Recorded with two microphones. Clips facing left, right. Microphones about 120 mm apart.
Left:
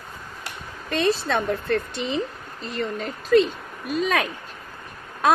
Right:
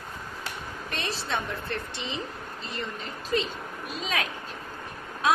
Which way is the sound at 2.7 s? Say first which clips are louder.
Left 9 dB; 50° left (ahead or behind).